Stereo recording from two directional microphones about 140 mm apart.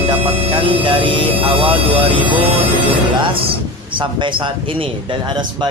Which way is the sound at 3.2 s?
40° right (ahead or behind).